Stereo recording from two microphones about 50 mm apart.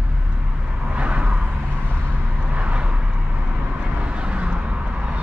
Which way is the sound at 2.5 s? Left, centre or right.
Right.